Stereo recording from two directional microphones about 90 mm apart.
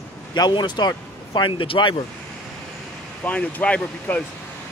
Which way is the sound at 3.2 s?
15° left (ahead or behind).